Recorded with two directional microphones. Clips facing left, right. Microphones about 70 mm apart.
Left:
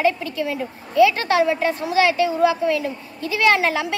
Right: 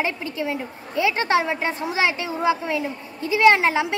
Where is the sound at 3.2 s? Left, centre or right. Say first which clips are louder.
Right 2 dB; right.